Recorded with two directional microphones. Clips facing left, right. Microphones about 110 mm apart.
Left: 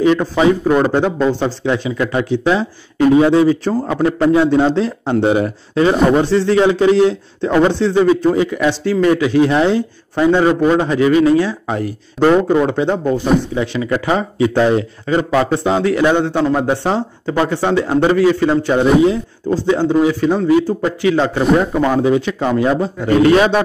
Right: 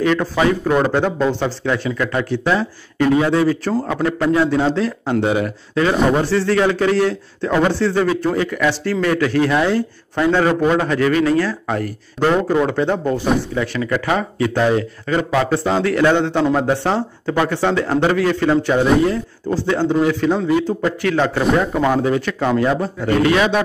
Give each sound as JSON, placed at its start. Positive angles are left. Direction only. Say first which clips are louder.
{"t": 0.0, "sound": "a man's voice", "louder": "left 4 dB", "side_deg": 15}
{"t": 22.9, "sound": "a man's voice", "louder": "left 6 dB", "side_deg": 40}